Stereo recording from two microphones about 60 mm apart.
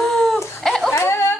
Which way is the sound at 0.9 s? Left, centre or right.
Left.